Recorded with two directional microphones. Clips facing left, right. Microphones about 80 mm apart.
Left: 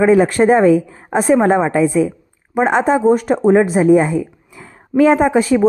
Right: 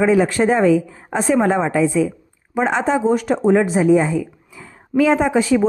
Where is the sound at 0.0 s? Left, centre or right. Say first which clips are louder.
Left 4 dB; left.